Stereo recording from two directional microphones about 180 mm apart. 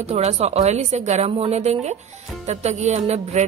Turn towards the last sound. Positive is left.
turn(degrees=-40)  # may be behind; listen again after turning